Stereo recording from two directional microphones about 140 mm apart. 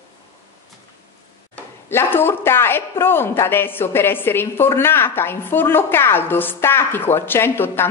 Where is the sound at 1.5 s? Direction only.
15° left (ahead or behind).